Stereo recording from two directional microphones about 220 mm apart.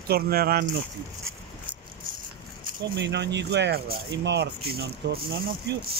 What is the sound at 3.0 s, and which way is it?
Speech, 50° right (ahead or behind).